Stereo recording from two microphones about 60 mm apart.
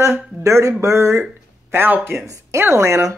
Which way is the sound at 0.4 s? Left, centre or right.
Right.